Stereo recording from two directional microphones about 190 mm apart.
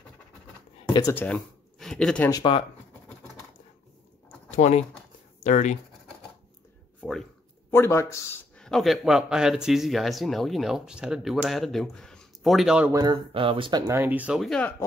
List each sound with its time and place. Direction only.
1.1 s speech: 5° left (ahead or behind)
2.3 s speech: 25° left (ahead or behind)
4.5 s speech: 40° left (ahead or behind)
7.0 s speech: 5° left (ahead or behind)
7.7 s speech: 15° left (ahead or behind)
8.5 s speech: 5° left (ahead or behind)
12.9 s speech: 25° right (ahead or behind); by 14.7 s centre (ahead or behind)